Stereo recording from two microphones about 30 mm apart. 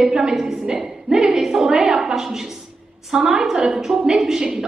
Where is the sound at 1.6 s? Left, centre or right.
Right.